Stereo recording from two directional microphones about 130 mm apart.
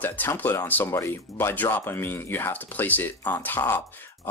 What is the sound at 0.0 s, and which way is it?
Speech, 15° left (ahead or behind).